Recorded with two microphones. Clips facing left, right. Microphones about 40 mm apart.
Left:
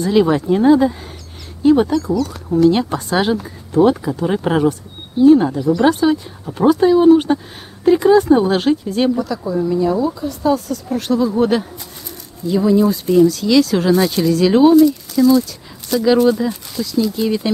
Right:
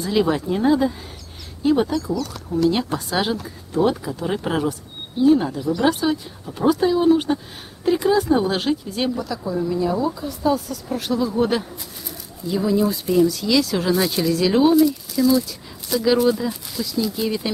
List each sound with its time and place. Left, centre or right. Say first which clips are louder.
0.0 s speech: left 6 dB; centre
2.5 s speech: left 6 dB; left
2.9 s speech: left 5 dB; centre